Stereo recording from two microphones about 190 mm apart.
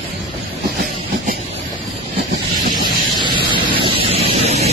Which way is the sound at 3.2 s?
25° right (ahead or behind).